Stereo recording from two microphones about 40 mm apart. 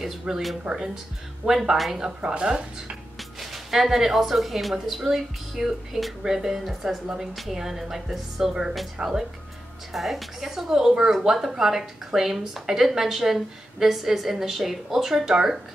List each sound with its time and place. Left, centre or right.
0.3 s a woman's voice: centre
1.6 s a woman's voice: centre; by 3.0 s right
3.3 s a woman's voice: centre